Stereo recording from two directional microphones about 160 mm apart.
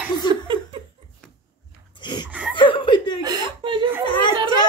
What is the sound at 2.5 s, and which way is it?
Chuckle, 30° left (ahead or behind).